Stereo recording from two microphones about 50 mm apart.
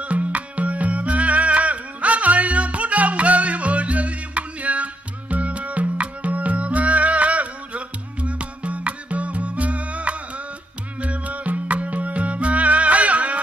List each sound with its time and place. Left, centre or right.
0.0 s music: right